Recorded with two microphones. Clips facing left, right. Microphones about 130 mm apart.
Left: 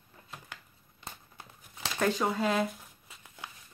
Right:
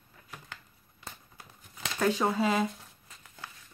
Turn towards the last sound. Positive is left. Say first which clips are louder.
# left 1 dB
turn(degrees=15)  # may be behind; listen again after turning